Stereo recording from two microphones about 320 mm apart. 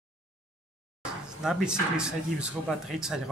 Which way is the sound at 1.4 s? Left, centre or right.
Centre.